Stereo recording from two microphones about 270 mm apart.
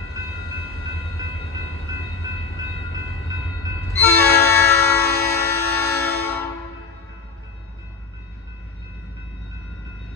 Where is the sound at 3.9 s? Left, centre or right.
Centre.